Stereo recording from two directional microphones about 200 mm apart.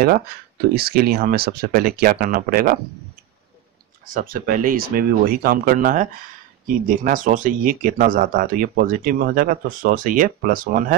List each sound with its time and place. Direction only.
0.0 s speech: 50° right (ahead or behind)
4.0 s speech: 45° right (ahead or behind)